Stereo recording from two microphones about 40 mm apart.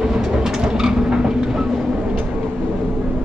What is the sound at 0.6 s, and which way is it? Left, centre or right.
Train, centre.